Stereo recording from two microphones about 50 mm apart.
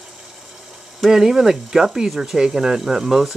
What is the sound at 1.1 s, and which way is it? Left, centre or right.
Speech, centre.